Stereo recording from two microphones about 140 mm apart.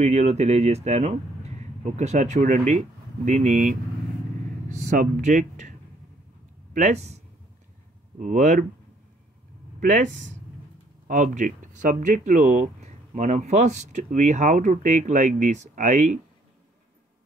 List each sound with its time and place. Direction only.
0.0 s speech: 50° right (ahead or behind); by 3.7 s 75° right (ahead or behind)
4.6 s speech: 60° right (ahead or behind)
6.7 s speech: 55° right (ahead or behind)
8.2 s speech: 60° right (ahead or behind)
9.8 s speech: 65° right (ahead or behind)